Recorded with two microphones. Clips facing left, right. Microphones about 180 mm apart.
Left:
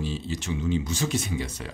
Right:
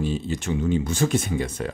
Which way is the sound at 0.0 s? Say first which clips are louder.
Right 5 dB; 50° right (ahead or behind).